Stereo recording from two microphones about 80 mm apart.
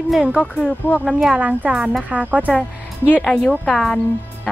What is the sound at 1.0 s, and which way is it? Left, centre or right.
Speech, centre.